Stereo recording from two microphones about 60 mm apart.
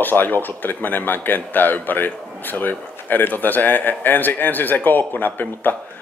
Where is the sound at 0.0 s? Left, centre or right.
Left.